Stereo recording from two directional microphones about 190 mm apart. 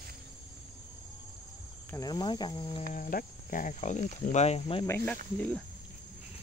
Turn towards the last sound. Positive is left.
turn(degrees=10)  # may be behind; listen again after turning